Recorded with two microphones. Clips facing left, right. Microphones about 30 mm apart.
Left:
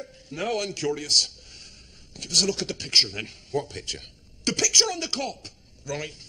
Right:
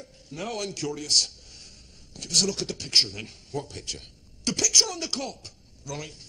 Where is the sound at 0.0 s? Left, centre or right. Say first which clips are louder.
Left 5 dB; left.